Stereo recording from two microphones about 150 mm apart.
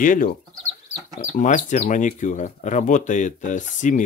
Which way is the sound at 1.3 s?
55° left (ahead or behind).